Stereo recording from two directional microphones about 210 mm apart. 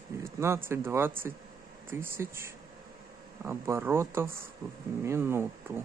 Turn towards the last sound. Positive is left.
turn(degrees=-10)  # may be behind; listen again after turning